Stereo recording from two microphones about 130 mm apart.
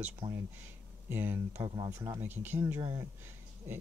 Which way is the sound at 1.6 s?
35° right (ahead or behind).